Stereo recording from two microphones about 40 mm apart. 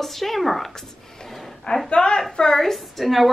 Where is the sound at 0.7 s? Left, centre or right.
Centre.